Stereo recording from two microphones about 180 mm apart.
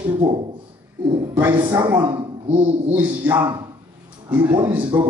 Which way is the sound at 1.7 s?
25° right (ahead or behind).